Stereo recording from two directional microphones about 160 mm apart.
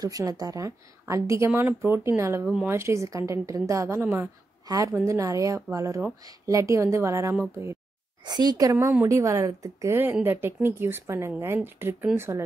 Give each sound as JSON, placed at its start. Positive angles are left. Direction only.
{"t": 0.0, "sound": "a woman's voice", "side_deg": -25}
{"t": 2.4, "sound": "speech", "side_deg": -5}
{"t": 2.7, "sound": "a woman's voice", "side_deg": -15}